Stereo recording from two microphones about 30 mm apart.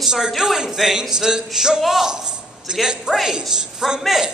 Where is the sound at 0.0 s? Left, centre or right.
Centre.